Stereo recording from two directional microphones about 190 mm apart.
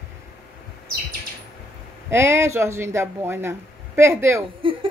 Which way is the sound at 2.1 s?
15° right (ahead or behind).